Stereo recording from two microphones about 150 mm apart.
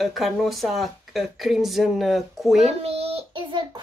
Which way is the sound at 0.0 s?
Centre (ahead or behind).